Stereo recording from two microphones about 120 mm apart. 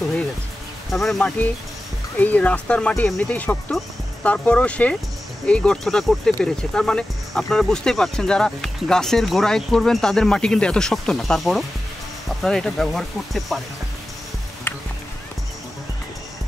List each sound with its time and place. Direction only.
0.9 s speech: 5° left (ahead or behind)
14.7 s music: 20° left (ahead or behind)